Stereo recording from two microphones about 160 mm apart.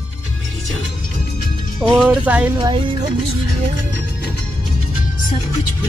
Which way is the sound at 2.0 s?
10° right (ahead or behind).